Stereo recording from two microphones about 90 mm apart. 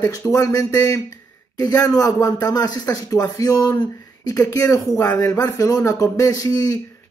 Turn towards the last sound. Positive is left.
turn(degrees=45)  # may be behind; listen again after turning